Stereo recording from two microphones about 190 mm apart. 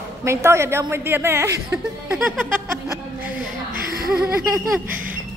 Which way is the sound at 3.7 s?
50° right (ahead or behind).